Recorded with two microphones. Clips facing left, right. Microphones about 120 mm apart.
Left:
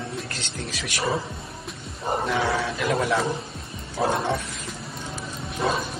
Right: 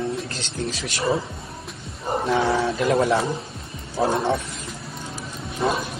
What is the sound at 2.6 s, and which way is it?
Speech, 30° right (ahead or behind).